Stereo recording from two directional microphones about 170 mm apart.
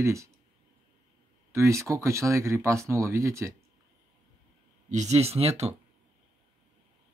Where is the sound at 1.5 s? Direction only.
15° right (ahead or behind).